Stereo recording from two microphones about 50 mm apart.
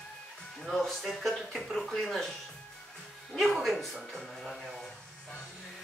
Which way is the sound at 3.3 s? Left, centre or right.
Centre.